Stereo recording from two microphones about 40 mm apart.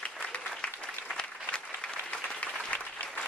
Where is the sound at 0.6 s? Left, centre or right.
Left.